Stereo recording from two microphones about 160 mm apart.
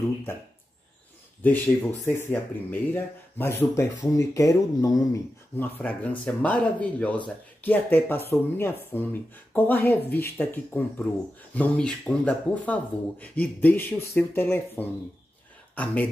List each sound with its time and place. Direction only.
2.0 s speech: 15° left (ahead or behind)
5.6 s speech: 10° left (ahead or behind)